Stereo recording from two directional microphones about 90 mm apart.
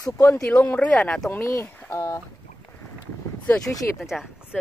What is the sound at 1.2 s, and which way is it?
Speech, 30° left (ahead or behind).